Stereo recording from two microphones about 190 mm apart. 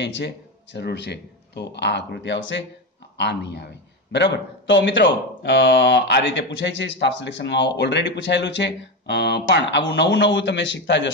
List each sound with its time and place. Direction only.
0.0 s speech: 65° left (ahead or behind)